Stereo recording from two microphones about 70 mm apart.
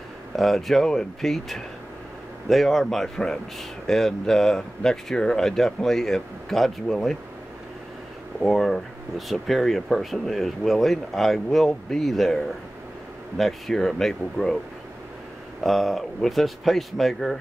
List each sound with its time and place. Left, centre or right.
0.4 s speech: centre
8.5 s speech: centre
15.6 s speech: centre